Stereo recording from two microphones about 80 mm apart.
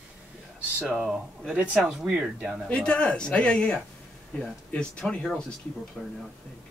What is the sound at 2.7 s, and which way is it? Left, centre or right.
Speech, centre.